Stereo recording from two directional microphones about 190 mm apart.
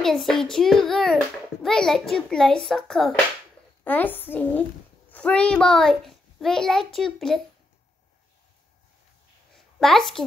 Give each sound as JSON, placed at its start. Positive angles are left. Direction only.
{"t": 0.0, "sound": "a child's voice", "side_deg": 0}
{"t": 9.8, "sound": "a child's voice", "side_deg": 0}